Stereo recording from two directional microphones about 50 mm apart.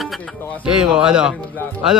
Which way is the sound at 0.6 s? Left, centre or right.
Centre.